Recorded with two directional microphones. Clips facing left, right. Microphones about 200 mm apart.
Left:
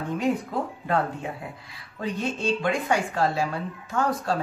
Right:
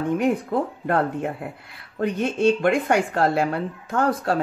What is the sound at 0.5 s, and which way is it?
Speech, 60° right (ahead or behind).